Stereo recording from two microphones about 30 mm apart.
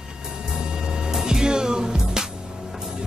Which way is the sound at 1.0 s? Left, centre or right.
Right.